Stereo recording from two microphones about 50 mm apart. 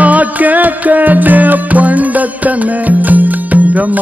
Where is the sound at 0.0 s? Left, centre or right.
Right.